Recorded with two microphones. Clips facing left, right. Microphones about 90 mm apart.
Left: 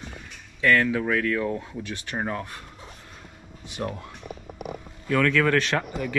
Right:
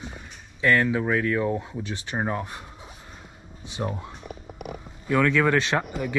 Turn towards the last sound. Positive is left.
turn(degrees=-20)  # may be behind; listen again after turning